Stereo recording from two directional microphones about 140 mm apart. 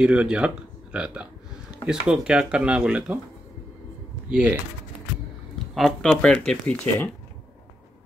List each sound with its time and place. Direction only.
0.0 s speech: 5° right (ahead or behind)
4.3 s speech: 10° right (ahead or behind)
5.8 s speech: 5° left (ahead or behind)